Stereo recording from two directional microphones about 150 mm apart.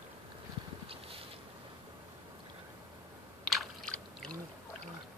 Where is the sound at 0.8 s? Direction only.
40° right (ahead or behind).